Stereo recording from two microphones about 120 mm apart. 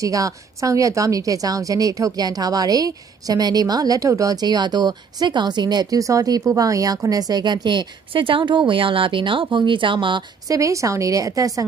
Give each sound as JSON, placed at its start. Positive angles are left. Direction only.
{"t": 0.0, "sound": "a woman's voice", "side_deg": -30}
{"t": 10.5, "sound": "speech", "side_deg": -25}